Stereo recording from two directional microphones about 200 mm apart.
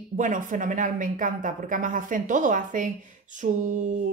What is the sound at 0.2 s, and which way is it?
A woman's voice, 40° right (ahead or behind).